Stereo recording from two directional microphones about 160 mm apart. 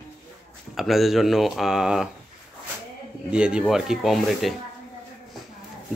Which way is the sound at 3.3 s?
5° right (ahead or behind).